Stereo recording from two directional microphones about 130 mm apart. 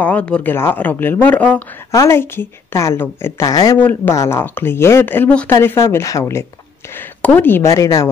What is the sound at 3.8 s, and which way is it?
Speech, 15° left (ahead or behind).